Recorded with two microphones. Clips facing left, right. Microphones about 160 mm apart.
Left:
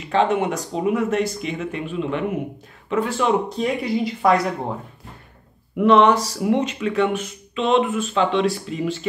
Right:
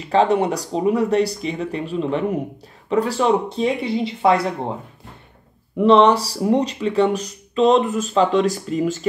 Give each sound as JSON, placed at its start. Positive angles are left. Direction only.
{"t": 0.0, "sound": "speech", "side_deg": -35}
{"t": 4.3, "sound": "speech", "side_deg": 0}
{"t": 5.8, "sound": "speech", "side_deg": -30}